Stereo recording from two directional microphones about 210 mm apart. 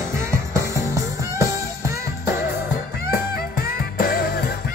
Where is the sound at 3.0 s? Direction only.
45° left (ahead or behind).